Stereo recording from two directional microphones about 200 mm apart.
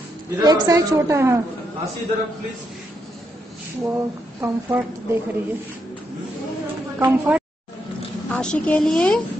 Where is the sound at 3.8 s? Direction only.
10° right (ahead or behind).